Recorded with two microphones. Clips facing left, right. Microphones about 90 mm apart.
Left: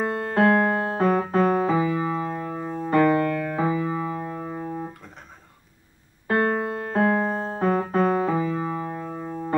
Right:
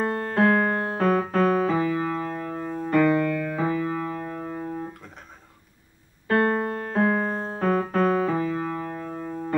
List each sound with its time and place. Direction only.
0.4 s keyboard: 15° left (ahead or behind)
6.2 s piano: 15° left (ahead or behind)
7.9 s music: 20° left (ahead or behind)
8.3 s keyboard: 10° left (ahead or behind)